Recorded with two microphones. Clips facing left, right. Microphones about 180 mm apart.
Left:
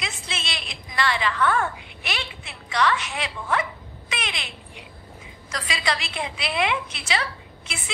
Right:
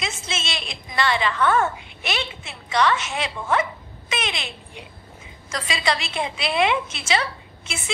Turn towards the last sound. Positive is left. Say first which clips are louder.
# right 4 dB
turn(degrees=-25)  # may be behind; listen again after turning